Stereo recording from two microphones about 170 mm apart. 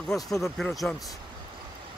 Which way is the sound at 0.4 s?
Centre (ahead or behind).